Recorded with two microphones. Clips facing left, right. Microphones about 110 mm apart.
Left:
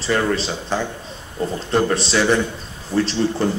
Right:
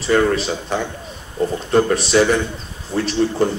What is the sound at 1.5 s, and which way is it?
Speech, 30° left (ahead or behind).